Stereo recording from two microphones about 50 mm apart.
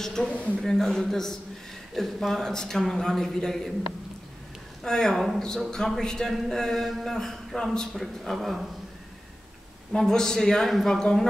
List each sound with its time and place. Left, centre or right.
0.0 s a man's voice: centre
4.8 s speech: centre
8.0 s a man's voice: centre
9.9 s speech: centre